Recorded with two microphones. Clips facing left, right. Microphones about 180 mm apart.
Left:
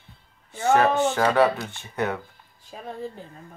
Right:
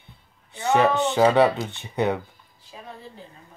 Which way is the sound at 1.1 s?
15° right (ahead or behind).